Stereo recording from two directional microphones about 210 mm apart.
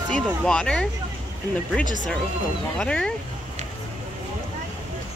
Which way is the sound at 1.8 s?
35° left (ahead or behind).